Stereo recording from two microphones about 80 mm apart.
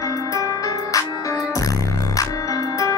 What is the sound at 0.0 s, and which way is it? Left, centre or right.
Music, left.